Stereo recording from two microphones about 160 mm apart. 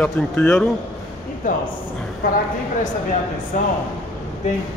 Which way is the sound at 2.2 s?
65° left (ahead or behind).